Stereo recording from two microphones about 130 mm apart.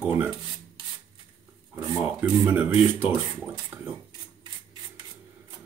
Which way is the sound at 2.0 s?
10° right (ahead or behind).